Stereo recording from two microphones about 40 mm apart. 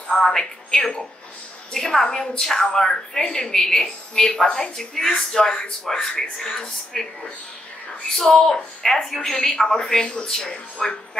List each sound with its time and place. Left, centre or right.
0.1 s a woman's voice: centre
8.3 s a woman's voice: centre